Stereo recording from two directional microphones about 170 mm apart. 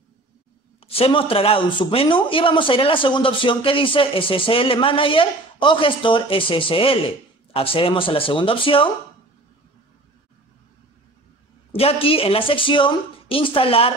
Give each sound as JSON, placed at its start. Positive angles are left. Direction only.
{"t": 0.8, "sound": "speech", "side_deg": 35}
{"t": 11.7, "sound": "speech", "side_deg": 35}